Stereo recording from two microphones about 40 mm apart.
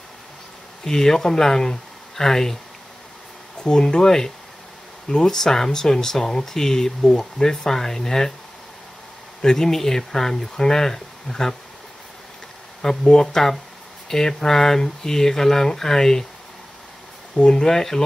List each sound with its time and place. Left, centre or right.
0.8 s speech: centre
3.6 s speech: left
9.4 s speech: centre
12.8 s speech: centre
17.4 s speech: centre